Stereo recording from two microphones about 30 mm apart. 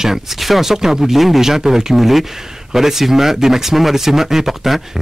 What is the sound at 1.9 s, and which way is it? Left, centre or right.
Speech, centre.